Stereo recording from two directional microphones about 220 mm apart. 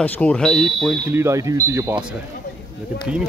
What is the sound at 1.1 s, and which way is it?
Speech, 15° right (ahead or behind).